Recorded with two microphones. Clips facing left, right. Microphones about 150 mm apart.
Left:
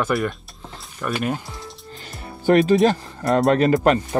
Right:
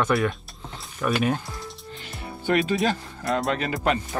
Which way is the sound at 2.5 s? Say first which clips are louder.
Left 7 dB; 40° left (ahead or behind).